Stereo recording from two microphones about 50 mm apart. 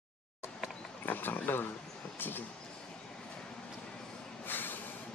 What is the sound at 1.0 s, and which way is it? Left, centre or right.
Speech, left.